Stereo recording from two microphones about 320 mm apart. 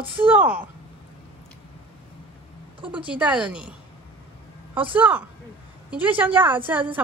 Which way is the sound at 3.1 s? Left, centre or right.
Centre.